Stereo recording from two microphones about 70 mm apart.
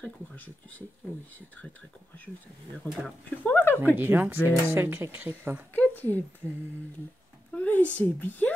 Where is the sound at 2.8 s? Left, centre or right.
Left.